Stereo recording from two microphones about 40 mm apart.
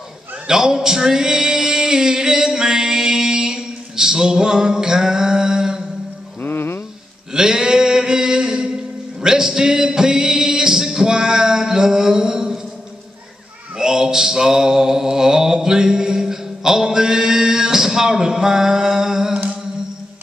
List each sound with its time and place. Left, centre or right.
0.5 s male singing: centre
6.4 s music: left
7.3 s a sound: centre
9.2 s music: centre
13.7 s mantra: centre